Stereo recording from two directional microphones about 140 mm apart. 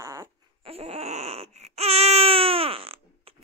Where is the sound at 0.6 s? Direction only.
45° right (ahead or behind).